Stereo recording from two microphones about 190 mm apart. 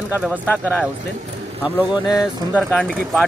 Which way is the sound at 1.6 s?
10° right (ahead or behind).